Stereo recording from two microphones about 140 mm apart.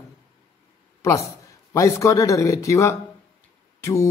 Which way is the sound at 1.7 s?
20° left (ahead or behind).